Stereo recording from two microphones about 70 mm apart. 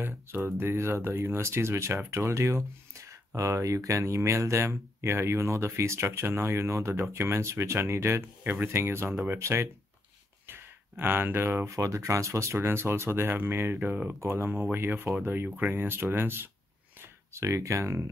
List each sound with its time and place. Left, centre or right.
0.4 s speech: right
15.2 s speech: right
15.7 s speech: right